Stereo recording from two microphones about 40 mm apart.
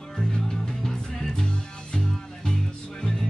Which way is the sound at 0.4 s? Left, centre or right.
Centre.